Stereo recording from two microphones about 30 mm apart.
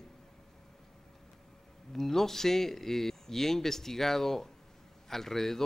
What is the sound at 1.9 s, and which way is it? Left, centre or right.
Speech, centre.